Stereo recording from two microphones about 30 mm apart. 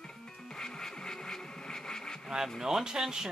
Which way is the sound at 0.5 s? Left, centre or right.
Left.